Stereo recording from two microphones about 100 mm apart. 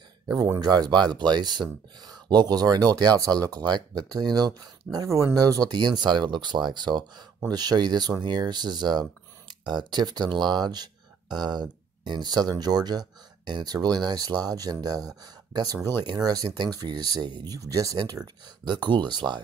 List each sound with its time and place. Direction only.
0.6 s speech: 45° right (ahead or behind)
5.0 s speech: 30° right (ahead or behind); by 19.4 s 50° right (ahead or behind)